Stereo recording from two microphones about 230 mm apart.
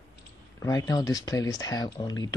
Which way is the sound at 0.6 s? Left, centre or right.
Centre.